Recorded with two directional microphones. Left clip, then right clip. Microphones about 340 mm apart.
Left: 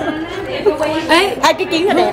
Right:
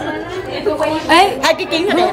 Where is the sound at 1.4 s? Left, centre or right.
Centre.